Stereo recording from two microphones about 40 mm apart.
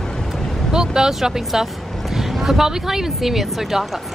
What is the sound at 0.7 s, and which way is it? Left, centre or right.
Speech, centre.